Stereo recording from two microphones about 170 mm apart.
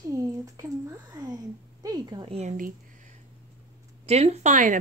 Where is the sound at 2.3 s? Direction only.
45° right (ahead or behind).